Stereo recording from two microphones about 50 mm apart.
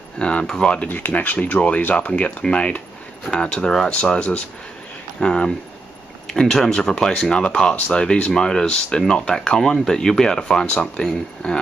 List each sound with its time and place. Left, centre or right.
0.2 s speech: left
0.8 s speech: left; by 10.7 s centre
10.7 s speech: left
11.1 s speech: centre